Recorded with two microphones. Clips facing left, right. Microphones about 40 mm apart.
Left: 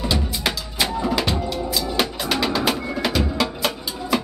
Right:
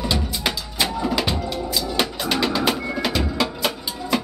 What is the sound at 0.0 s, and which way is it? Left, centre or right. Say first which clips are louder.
Music: even; centre.